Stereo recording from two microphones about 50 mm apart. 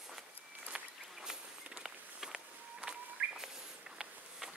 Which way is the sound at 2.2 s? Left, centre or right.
Centre.